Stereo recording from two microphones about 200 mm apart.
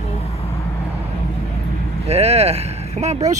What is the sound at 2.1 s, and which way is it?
Speech, 30° right (ahead or behind).